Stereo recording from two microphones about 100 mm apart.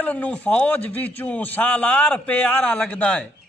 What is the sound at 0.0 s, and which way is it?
A man's voice, 15° left (ahead or behind).